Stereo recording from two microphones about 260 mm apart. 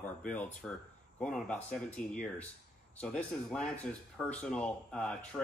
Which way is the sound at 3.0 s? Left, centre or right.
Centre.